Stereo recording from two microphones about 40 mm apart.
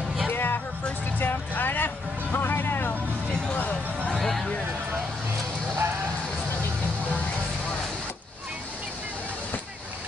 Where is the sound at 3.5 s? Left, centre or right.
Left.